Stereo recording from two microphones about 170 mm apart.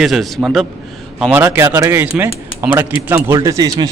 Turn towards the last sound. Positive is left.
turn(degrees=-20)  # may be behind; listen again after turning